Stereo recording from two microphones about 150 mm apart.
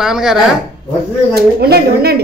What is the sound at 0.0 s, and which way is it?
Speech, 5° right (ahead or behind).